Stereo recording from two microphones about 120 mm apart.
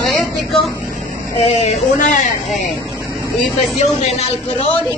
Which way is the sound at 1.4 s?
70° left (ahead or behind).